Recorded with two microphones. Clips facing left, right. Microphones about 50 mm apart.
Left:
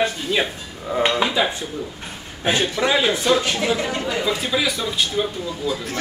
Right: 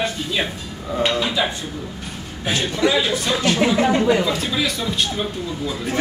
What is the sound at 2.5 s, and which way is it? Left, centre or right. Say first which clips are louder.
Speech: even; left.